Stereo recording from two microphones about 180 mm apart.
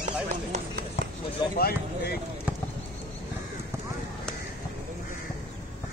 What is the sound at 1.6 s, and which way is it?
Speech, 60° left (ahead or behind).